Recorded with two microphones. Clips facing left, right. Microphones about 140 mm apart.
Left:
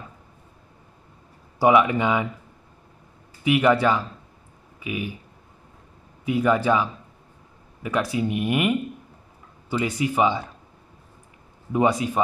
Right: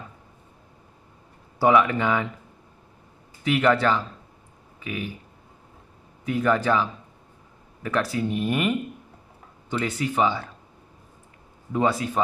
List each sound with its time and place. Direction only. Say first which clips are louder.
1.6 s speech: left 1 dB; 15° left (ahead or behind)
3.4 s speech: left 2 dB; 10° left (ahead or behind)
6.2 s speech: left 2 dB; 10° left (ahead or behind)
11.7 s speech: left 2 dB; 15° left (ahead or behind)